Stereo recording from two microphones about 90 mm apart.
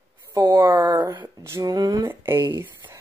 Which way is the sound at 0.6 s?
55° right (ahead or behind).